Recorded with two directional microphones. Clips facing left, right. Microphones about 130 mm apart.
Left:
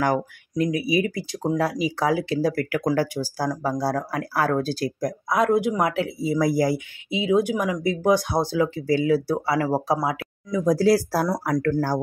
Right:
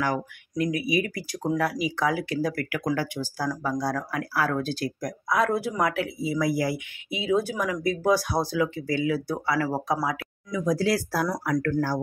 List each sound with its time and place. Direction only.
0.6 s speech: 25° left (ahead or behind)
5.3 s speech: 20° left (ahead or behind)
6.1 s speech: 40° left (ahead or behind)
7.1 s speech: 20° left (ahead or behind); by 12.0 s 40° left (ahead or behind)